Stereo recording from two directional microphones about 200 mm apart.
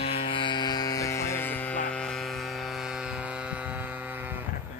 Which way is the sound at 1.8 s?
5° left (ahead or behind).